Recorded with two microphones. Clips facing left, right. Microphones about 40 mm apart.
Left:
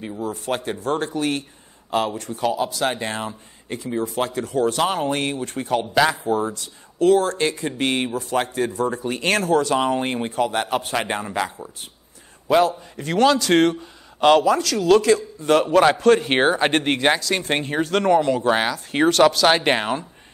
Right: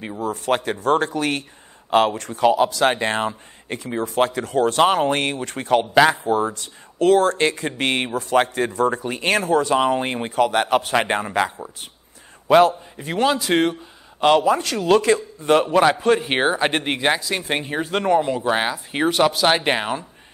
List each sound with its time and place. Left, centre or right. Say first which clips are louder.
0.2 s speech: right 4 dB; right
2.4 s a man's voice: right 6 dB; right
10.3 s a man's voice: right 6 dB; right
12.9 s speech: left 3 dB; centre
13.5 s speech: left 2 dB; centre
14.4 s a man's voice: even; right
15.9 s speech: left 2 dB; centre
16.2 s speech: left 1 dB; centre
17.6 s speech: left 2 dB; centre
18.0 s speech: left 1 dB; centre
19.7 s speech: left 1 dB; centre